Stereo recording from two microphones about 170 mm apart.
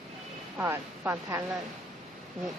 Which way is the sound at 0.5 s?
10° right (ahead or behind).